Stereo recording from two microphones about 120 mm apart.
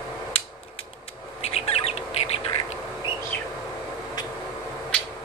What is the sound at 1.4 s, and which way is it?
Bird, 60° left (ahead or behind).